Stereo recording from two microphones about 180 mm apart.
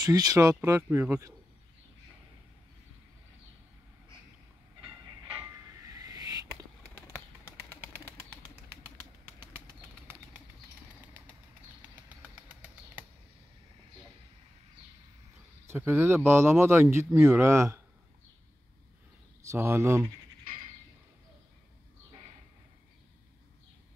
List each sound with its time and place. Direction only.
0.0 s speech: 20° right (ahead or behind)
5.9 s owl: 20° right (ahead or behind)
11.9 s a sound: 10° right (ahead or behind)
15.6 s speech: 15° right (ahead or behind)
19.4 s speech: 15° right (ahead or behind)